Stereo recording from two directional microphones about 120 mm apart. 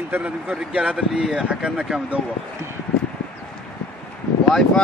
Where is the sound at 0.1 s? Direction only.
10° right (ahead or behind).